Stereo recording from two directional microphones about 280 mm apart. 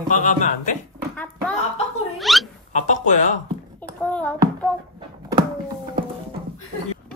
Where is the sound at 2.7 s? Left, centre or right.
Left.